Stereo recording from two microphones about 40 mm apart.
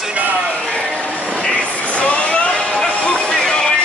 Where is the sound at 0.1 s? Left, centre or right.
Right.